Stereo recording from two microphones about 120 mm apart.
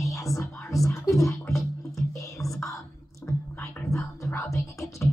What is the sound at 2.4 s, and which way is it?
Whispering, 25° left (ahead or behind).